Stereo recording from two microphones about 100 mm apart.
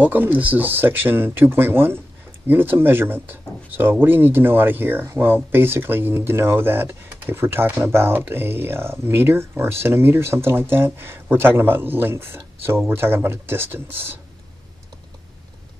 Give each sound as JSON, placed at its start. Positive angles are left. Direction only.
{"t": 0.0, "sound": "speech", "side_deg": -15}